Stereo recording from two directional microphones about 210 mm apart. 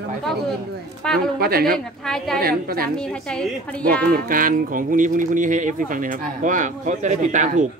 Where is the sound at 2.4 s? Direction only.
45° right (ahead or behind).